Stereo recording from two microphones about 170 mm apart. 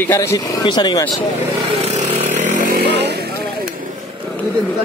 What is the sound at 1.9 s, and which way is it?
Chainsaw, 45° right (ahead or behind).